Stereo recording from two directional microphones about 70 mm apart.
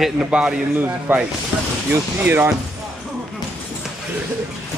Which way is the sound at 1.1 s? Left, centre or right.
Right.